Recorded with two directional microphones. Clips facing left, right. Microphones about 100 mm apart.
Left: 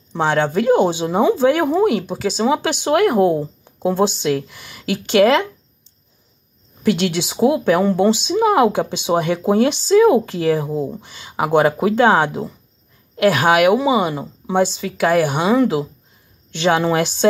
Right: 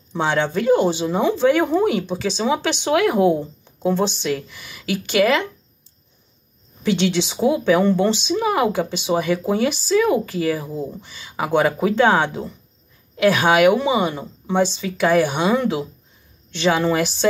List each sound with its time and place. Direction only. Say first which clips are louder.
0.1 s speech: left 3 dB; centre (ahead or behind)
0.5 s a woman's voice: left 1 dB; 15° left (ahead or behind)
6.9 s speech: left 1 dB; 10° left (ahead or behind)
16.5 s speech: left 2 dB; 15° left (ahead or behind)